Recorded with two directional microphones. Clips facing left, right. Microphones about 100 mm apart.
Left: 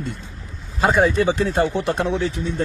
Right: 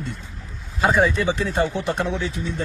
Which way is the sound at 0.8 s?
50° left (ahead or behind).